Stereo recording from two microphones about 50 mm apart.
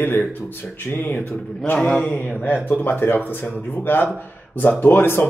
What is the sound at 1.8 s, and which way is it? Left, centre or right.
Mantra, centre.